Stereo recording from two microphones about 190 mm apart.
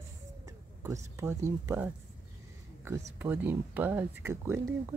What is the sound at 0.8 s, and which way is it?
Speech, 15° right (ahead or behind).